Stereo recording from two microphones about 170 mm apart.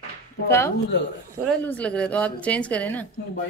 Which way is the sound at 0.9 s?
90° left.